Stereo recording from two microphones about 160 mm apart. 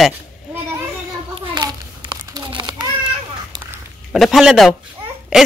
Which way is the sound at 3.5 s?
30° right (ahead or behind).